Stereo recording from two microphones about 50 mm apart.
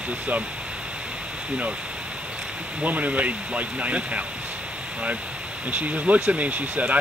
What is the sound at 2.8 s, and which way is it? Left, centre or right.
Speech, right.